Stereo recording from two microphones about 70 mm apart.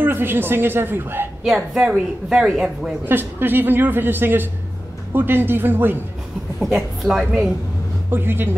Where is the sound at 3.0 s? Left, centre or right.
Right.